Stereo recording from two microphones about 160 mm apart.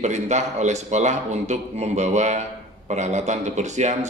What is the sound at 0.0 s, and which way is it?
Speech, 45° right (ahead or behind).